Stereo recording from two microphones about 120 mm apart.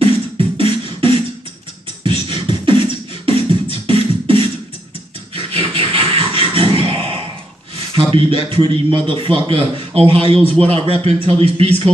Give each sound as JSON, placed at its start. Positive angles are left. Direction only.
{"t": 0.0, "sound": "beatboxing", "side_deg": -50}
{"t": 7.9, "sound": "a man's voice", "side_deg": -50}
{"t": 10.4, "sound": "a man's voice", "side_deg": 10}
{"t": 10.7, "sound": "a man's voice", "side_deg": -55}